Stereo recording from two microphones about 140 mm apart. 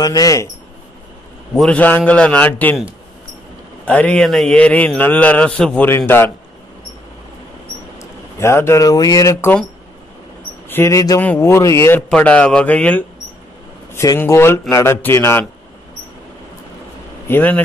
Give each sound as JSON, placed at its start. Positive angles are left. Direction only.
{"t": 0.0, "sound": "speech", "side_deg": 25}
{"t": 1.5, "sound": "speech", "side_deg": 5}
{"t": 3.8, "sound": "speech", "side_deg": 10}
{"t": 8.0, "sound": "speech", "side_deg": 20}
{"t": 10.7, "sound": "speech", "side_deg": 20}
{"t": 12.1, "sound": "speech", "side_deg": 10}
{"t": 17.3, "sound": "speech", "side_deg": 10}